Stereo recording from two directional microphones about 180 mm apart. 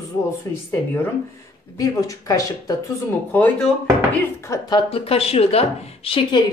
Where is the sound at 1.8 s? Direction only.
20° left (ahead or behind).